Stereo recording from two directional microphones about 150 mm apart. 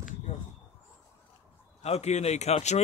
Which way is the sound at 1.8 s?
45° left (ahead or behind).